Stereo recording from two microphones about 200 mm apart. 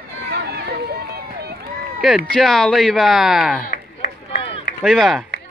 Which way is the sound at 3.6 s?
45° left (ahead or behind).